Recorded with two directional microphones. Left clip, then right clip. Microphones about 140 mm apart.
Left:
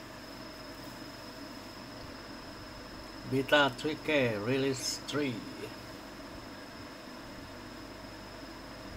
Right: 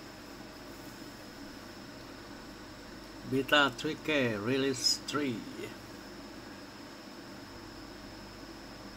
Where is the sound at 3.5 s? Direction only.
20° right (ahead or behind).